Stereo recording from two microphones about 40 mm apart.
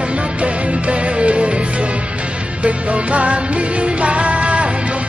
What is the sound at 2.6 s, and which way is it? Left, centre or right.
Music, right.